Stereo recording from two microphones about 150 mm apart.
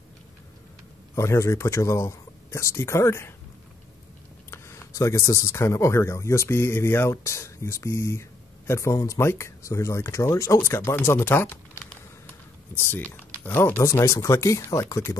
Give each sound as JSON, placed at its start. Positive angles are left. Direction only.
{"t": 1.1, "sound": "speech", "side_deg": 20}
{"t": 4.5, "sound": "speech", "side_deg": 20}
{"t": 12.7, "sound": "speech", "side_deg": 10}